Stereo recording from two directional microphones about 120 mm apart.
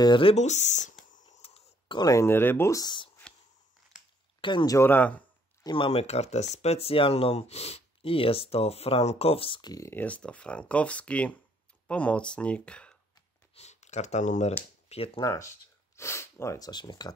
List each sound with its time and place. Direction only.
0.0 s speech: 45° left (ahead or behind)
0.4 s speech: 75° left (ahead or behind)
1.4 s a sound: 45° left (ahead or behind)
2.0 s speech: 25° left (ahead or behind)
2.8 s speech: 40° left (ahead or behind)
3.9 s a sound: 5° right (ahead or behind)
4.4 s speech: 40° left (ahead or behind)
4.6 s speech: 20° left (ahead or behind)
5.6 s speech: 40° left (ahead or behind)
5.9 s speech: 60° left (ahead or behind); by 9.8 s 35° left (ahead or behind)
9.8 s speech: 15° left (ahead or behind)
13.6 s speech: 70° left (ahead or behind)
15.1 s speech: 25° left (ahead or behind)